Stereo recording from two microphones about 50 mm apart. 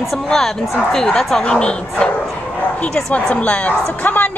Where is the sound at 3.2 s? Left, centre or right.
Left.